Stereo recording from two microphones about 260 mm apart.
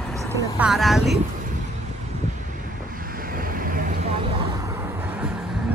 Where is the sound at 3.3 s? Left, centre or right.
Right.